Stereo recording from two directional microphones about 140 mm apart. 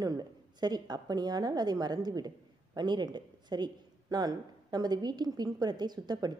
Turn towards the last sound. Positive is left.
turn(degrees=-30)  # may be behind; listen again after turning